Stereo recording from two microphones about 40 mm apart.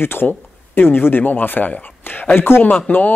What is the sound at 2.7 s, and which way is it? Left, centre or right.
Speech, left.